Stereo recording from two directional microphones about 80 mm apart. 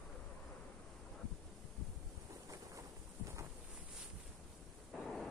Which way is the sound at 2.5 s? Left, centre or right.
Right.